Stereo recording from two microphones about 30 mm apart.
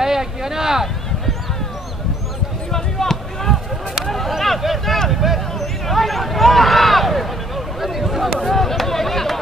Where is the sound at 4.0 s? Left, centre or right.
Centre.